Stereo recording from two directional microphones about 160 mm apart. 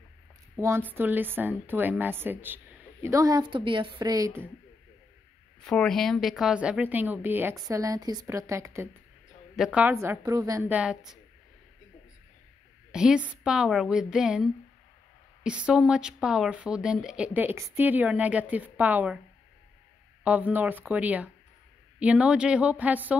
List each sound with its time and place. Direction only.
0.6 s speech: 15° right (ahead or behind)
5.6 s speech: 5° left (ahead or behind); by 10.7 s 20° right (ahead or behind)
10.7 s a woman's voice: 5° right (ahead or behind)
12.9 s a woman's voice: 5° right (ahead or behind)
20.2 s speech: 10° right (ahead or behind)